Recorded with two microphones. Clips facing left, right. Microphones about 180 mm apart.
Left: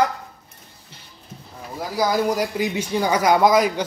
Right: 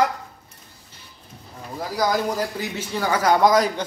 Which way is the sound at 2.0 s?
15° left (ahead or behind).